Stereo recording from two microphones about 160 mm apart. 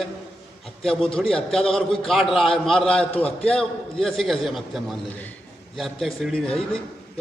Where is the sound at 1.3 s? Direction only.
5° left (ahead or behind).